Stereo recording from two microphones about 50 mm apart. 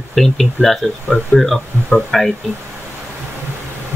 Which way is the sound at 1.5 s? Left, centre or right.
Left.